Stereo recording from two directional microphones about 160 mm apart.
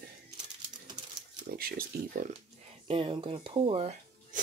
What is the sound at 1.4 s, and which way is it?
Speech, 70° right (ahead or behind).